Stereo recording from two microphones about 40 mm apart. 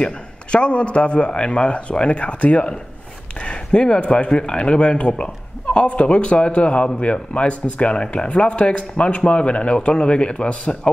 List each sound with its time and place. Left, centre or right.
0.0 s speech: left
7.9 s speech: left